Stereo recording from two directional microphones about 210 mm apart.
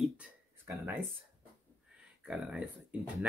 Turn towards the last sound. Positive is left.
turn(degrees=-5)  # may be behind; listen again after turning